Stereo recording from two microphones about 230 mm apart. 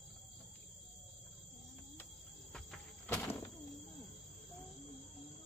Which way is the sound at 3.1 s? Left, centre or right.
Centre.